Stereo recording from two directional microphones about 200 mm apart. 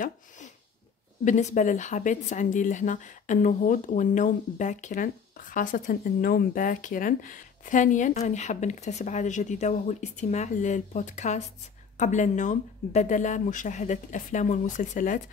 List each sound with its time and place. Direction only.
1.2 s a woman's voice: 35° left (ahead or behind)